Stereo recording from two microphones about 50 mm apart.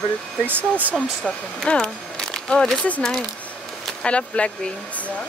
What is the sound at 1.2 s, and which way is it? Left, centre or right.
Speech, centre.